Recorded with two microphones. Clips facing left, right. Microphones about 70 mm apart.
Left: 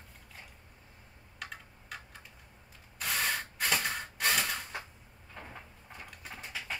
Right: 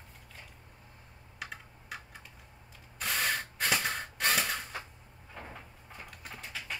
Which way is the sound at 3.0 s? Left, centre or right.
Centre.